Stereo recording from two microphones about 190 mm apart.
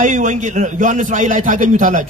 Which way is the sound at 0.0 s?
40° right (ahead or behind).